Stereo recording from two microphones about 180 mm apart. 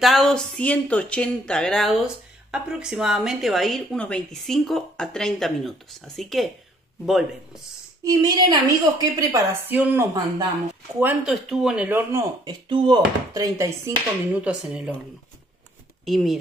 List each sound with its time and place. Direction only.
0.0 s speech: centre (ahead or behind)
8.0 s a woman's voice: 20° right (ahead or behind); by 14.9 s 5° right (ahead or behind)
16.1 s speech: centre (ahead or behind)